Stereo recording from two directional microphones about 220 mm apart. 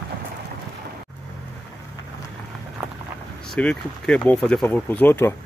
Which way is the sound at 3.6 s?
5° left (ahead or behind).